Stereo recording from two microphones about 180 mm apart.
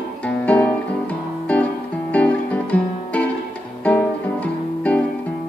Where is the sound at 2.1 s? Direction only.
5° left (ahead or behind).